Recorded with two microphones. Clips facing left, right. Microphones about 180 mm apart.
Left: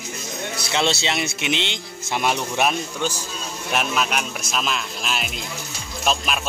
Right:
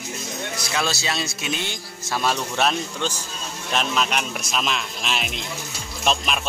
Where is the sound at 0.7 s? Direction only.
25° left (ahead or behind).